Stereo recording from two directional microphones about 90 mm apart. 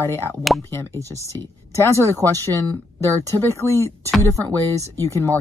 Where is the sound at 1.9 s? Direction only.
35° right (ahead or behind).